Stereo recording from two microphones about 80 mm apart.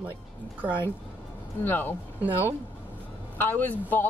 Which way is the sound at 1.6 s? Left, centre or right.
Left.